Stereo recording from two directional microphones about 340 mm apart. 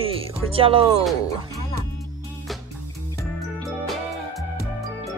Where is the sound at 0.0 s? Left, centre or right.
Centre.